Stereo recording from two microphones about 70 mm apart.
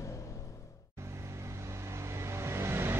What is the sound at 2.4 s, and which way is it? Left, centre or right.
Vehicle, right.